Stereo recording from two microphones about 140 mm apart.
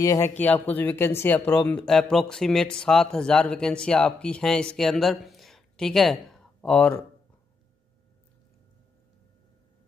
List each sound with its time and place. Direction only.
0.0 s speech: 25° left (ahead or behind)
0.4 s speech: 10° left (ahead or behind)